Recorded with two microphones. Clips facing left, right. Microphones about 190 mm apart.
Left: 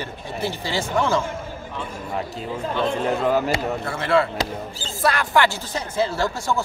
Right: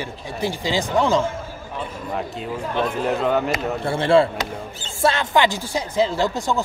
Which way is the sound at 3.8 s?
30° right (ahead or behind).